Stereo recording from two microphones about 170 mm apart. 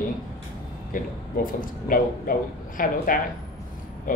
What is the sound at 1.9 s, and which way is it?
Speech, 55° left (ahead or behind).